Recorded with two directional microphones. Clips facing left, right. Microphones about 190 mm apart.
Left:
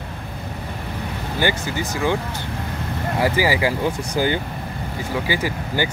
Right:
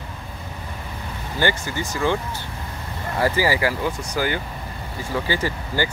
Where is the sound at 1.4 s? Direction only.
15° left (ahead or behind).